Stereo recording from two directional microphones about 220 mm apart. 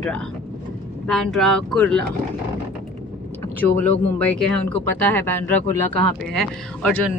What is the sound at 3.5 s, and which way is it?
Speech, 5° left (ahead or behind).